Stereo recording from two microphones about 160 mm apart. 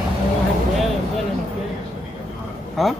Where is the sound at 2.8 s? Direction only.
Centre (ahead or behind).